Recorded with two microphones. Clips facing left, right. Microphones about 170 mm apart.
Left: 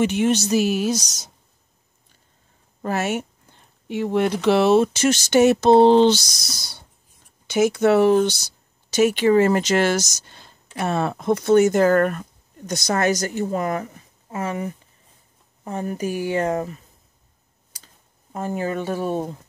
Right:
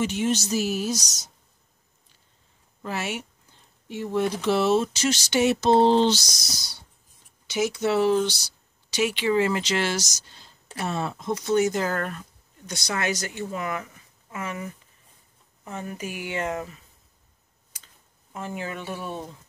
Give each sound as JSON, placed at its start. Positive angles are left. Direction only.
{"t": 0.0, "sound": "speech", "side_deg": 60}
{"t": 2.8, "sound": "a sound", "side_deg": 45}
{"t": 3.9, "sound": "speech", "side_deg": 70}
{"t": 18.3, "sound": "speech", "side_deg": 40}